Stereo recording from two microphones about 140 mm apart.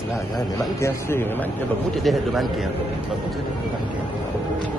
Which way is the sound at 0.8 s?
15° left (ahead or behind).